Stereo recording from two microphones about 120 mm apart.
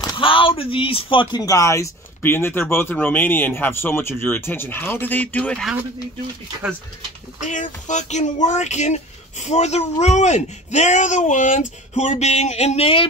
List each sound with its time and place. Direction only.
0.0 s speech: 40° left (ahead or behind); by 5.7 s 10° left (ahead or behind)
7.3 s speech: 90° left; by 13.1 s 50° left (ahead or behind)